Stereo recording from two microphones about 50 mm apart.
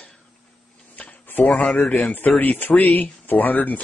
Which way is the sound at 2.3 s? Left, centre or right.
Left.